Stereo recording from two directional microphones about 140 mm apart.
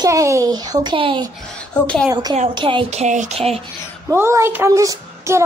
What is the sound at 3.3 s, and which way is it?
Speech, 45° right (ahead or behind).